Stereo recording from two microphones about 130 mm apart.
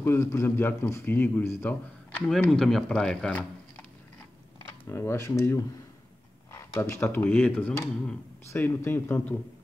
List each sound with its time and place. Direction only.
0.0 s a man's voice: 20° left (ahead or behind)
4.8 s a man's voice: 20° left (ahead or behind)
8.5 s a man's voice: 20° left (ahead or behind)